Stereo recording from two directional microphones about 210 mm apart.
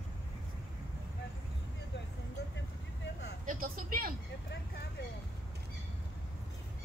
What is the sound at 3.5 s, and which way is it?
Vehicle, 40° right (ahead or behind).